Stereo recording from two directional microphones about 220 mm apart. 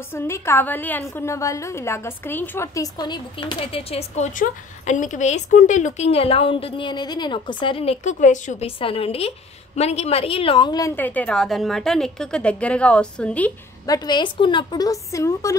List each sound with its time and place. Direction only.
0.1 s a woman's voice: 10° left (ahead or behind)
13.8 s a woman's voice: 20° left (ahead or behind)